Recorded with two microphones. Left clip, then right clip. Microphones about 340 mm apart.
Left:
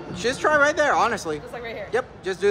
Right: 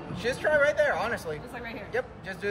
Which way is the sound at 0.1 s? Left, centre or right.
Centre.